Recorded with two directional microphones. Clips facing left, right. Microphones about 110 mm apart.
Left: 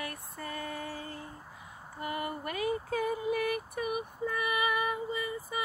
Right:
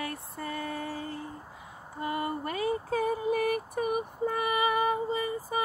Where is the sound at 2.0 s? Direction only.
30° right (ahead or behind).